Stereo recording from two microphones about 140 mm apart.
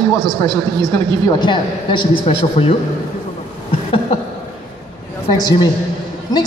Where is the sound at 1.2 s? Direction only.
30° left (ahead or behind).